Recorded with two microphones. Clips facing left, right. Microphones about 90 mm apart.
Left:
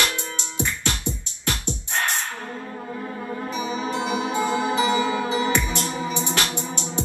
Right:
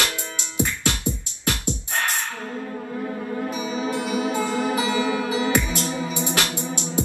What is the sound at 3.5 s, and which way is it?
Music, 25° left (ahead or behind).